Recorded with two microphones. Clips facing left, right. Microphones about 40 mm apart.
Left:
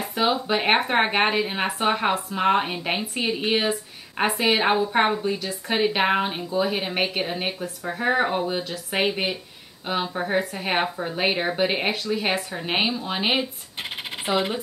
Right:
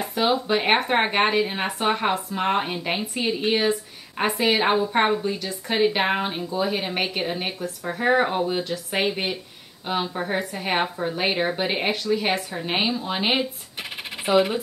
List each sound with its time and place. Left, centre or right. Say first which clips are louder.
0.0 s a woman's voice: right 1 dB; centre